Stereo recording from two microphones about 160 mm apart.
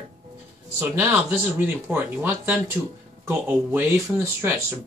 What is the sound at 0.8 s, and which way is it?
Speech, 15° right (ahead or behind).